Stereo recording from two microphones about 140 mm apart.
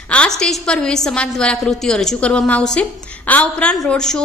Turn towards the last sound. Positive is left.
turn(degrees=5)  # may be behind; listen again after turning